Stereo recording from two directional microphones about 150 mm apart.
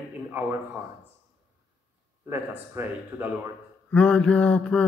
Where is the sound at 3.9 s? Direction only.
10° left (ahead or behind).